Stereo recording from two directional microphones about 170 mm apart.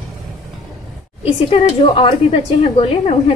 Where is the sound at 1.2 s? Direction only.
35° left (ahead or behind).